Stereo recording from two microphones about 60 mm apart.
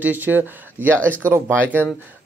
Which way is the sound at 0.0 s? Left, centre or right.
Right.